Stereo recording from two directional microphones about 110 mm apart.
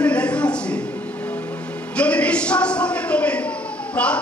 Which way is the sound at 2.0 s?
10° left (ahead or behind).